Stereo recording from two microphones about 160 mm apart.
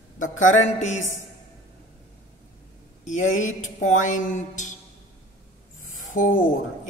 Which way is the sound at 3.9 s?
50° left (ahead or behind).